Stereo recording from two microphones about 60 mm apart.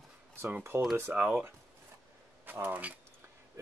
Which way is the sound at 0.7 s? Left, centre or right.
Right.